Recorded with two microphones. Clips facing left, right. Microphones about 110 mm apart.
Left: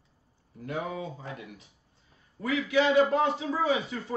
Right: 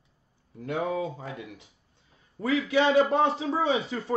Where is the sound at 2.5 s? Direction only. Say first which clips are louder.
Right 2 dB; 30° right (ahead or behind).